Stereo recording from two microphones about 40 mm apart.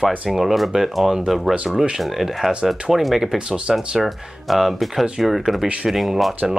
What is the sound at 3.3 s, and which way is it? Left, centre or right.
Speech, right.